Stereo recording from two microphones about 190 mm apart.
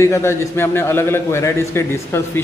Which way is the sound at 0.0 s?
15° left (ahead or behind).